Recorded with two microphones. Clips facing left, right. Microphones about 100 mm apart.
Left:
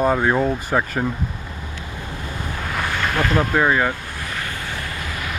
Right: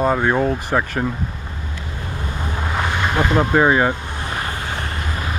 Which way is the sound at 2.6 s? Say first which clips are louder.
Right 2 dB; 20° right (ahead or behind).